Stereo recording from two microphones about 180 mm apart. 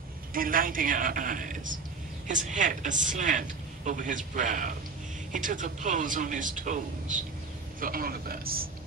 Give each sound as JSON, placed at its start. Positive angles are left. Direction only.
{"t": 0.3, "sound": "a man's voice", "side_deg": -50}